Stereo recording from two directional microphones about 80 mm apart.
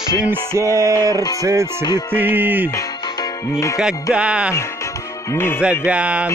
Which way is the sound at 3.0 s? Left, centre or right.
Left.